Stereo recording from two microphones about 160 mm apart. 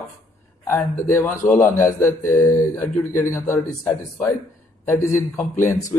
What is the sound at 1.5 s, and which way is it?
A man's voice, 15° left (ahead or behind).